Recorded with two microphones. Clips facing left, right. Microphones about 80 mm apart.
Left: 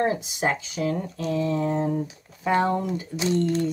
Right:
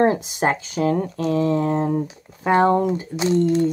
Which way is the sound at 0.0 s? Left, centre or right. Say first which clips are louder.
Right 6 dB; right.